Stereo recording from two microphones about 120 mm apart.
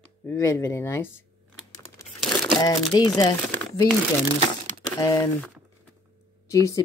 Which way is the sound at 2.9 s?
35° left (ahead or behind).